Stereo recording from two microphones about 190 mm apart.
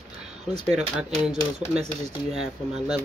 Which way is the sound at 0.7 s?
5° right (ahead or behind).